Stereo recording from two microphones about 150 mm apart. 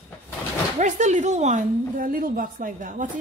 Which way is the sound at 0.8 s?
55° right (ahead or behind).